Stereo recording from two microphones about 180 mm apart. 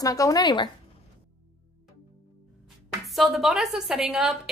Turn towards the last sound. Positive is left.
turn(degrees=-5)  # may be behind; listen again after turning